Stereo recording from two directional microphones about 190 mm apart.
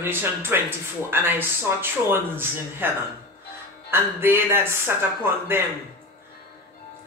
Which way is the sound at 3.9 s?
10° right (ahead or behind).